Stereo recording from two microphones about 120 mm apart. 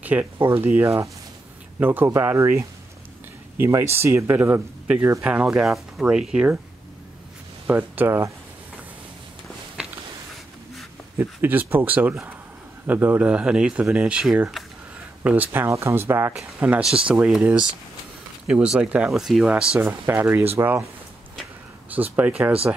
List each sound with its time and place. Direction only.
0.0 s speech: 15° right (ahead or behind)
7.6 s speech: 15° right (ahead or behind)
9.8 s a sound: 10° right (ahead or behind)
11.1 s speech: 15° right (ahead or behind)
16.6 s speech: 10° right (ahead or behind)
19.8 s speech: 20° right (ahead or behind)
21.9 s speech: 15° right (ahead or behind)